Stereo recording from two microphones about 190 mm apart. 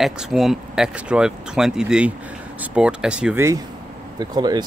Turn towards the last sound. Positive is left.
turn(degrees=-20)  # may be behind; listen again after turning